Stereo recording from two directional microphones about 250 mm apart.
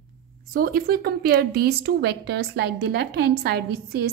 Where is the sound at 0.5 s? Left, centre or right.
Right.